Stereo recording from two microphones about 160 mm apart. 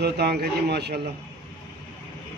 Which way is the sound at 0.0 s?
85° right.